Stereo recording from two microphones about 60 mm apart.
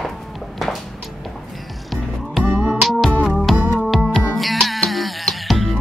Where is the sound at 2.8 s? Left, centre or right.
Centre.